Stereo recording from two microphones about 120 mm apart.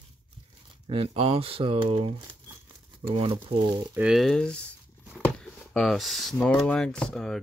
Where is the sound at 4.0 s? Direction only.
5° right (ahead or behind).